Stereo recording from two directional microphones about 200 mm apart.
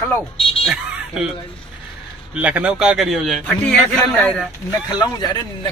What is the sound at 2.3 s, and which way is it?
A man's voice, 5° right (ahead or behind).